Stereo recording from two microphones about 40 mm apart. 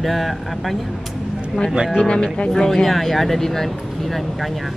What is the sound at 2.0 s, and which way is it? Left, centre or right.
Speech, left.